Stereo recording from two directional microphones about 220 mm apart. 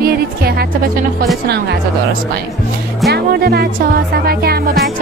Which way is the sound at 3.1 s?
45° right (ahead or behind).